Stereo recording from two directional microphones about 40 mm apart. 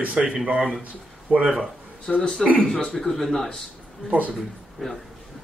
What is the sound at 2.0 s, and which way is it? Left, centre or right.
Speech, centre.